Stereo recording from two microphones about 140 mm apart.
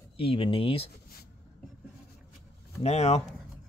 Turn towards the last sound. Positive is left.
turn(degrees=50)  # may be behind; listen again after turning